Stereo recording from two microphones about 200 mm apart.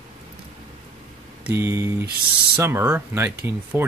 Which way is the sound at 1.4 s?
15° right (ahead or behind).